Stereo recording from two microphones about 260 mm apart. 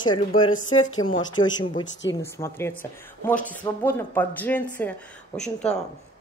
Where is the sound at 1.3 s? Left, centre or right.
Centre.